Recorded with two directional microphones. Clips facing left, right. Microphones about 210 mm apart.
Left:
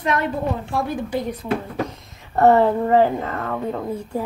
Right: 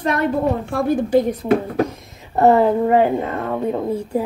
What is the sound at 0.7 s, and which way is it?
Speech, 50° right (ahead or behind).